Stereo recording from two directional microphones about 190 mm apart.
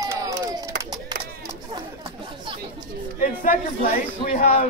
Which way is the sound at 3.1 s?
45° left (ahead or behind).